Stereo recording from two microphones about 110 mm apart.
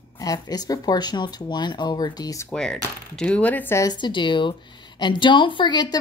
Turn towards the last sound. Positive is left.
turn(degrees=40)  # may be behind; listen again after turning